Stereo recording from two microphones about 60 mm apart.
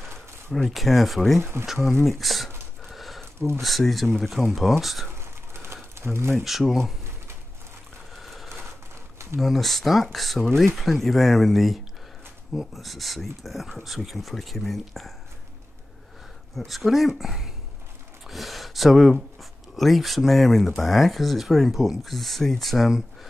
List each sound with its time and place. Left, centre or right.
0.7 s speech: centre
1.4 s speech: right
2.0 s speech: centre
2.8 s a sound: centre
3.3 s speech: right
3.6 s speech: centre
5.1 s a sound: right
5.9 s speech: right
6.4 s speech: centre
8.2 s a sound: centre
9.4 s speech: centre
16.5 s speech: centre